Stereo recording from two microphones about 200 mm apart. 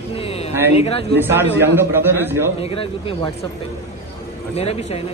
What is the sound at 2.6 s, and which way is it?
Speech, 30° left (ahead or behind).